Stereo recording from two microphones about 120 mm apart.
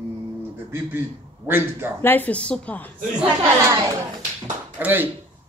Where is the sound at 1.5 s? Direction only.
20° right (ahead or behind).